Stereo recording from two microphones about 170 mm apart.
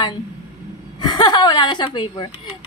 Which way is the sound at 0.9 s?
25° left (ahead or behind).